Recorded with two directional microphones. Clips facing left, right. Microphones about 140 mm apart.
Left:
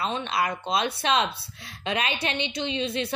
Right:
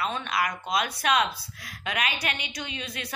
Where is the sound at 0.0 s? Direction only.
30° left (ahead or behind).